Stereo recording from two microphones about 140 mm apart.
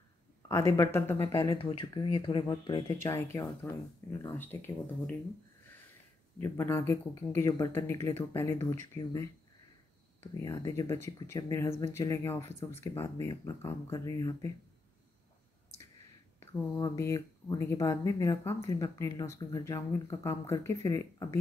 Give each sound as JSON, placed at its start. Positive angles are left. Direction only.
{"t": 0.5, "sound": "speech", "side_deg": 20}
{"t": 1.6, "sound": "speech", "side_deg": 40}
{"t": 3.0, "sound": "speech", "side_deg": 20}
{"t": 6.4, "sound": "speech", "side_deg": 20}
{"t": 16.3, "sound": "speech", "side_deg": 20}